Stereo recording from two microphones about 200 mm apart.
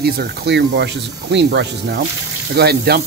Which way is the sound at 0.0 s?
50° right (ahead or behind).